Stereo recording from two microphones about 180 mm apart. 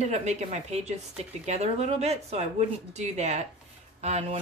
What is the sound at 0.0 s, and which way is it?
Speech, 40° right (ahead or behind).